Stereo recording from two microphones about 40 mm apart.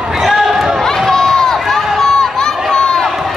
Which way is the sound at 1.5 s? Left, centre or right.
Centre.